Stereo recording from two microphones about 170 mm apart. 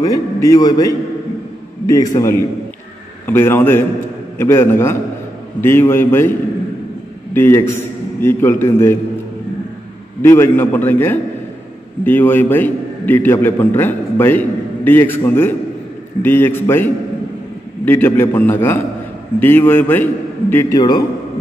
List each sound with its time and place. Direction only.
0.0 s a man's voice: 20° left (ahead or behind)
7.3 s a man's voice: 15° left (ahead or behind)
10.2 s a man's voice: 15° left (ahead or behind)